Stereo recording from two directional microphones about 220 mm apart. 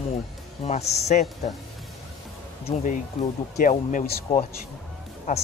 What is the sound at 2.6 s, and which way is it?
Speech, 30° left (ahead or behind).